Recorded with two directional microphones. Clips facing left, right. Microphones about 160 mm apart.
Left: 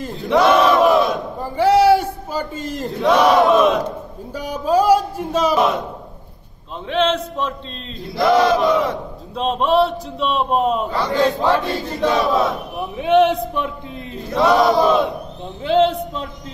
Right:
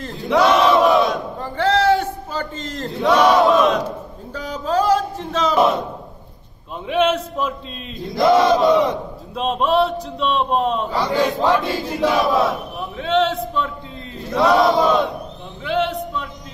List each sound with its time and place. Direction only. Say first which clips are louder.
0.0 s battle cry: left 1 dB; centre (ahead or behind)
4.3 s a sound: left 4 dB; 10° left (ahead or behind)
6.9 s battle cry: right 1 dB; 10° right (ahead or behind)
8.2 s chant: right 1 dB; 25° right (ahead or behind)
9.3 s a man's voice: left 1 dB; centre (ahead or behind)
10.9 s battle cry: left 1 dB; 10° right (ahead or behind)
12.7 s a man's voice: left 8 dB; 15° left (ahead or behind)
14.3 s a man's voice: left 1 dB; centre (ahead or behind)
15.6 s a man's voice: left 5 dB; 30° left (ahead or behind)